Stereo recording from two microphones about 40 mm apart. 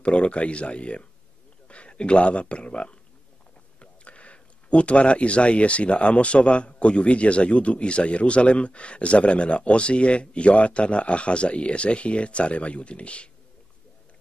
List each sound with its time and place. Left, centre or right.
0.0 s speech: left